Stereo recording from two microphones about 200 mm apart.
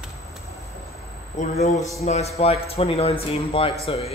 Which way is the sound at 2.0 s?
30° left (ahead or behind).